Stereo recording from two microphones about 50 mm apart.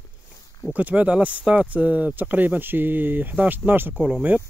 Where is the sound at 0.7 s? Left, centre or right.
Right.